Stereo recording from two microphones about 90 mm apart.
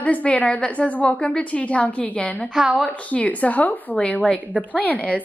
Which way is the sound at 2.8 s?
15° left (ahead or behind).